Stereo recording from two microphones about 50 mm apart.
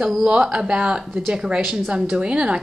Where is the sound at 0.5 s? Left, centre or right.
Centre.